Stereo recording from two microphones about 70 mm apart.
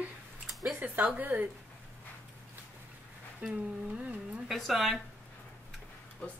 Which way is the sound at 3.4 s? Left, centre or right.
Right.